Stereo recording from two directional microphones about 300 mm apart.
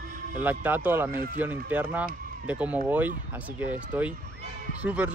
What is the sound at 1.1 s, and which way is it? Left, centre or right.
Speech, right.